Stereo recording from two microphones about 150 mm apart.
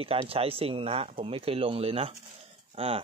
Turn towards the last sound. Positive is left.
turn(degrees=-40)  # may be behind; listen again after turning